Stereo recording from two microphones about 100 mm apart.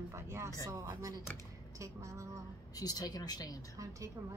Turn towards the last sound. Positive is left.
turn(degrees=40)  # may be behind; listen again after turning